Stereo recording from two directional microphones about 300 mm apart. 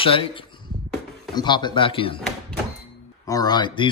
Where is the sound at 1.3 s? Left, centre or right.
Centre.